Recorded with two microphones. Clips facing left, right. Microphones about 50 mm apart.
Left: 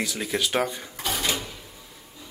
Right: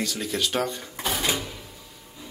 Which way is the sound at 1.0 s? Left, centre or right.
Right.